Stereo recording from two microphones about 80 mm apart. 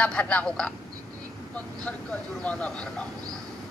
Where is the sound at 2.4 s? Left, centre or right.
Centre.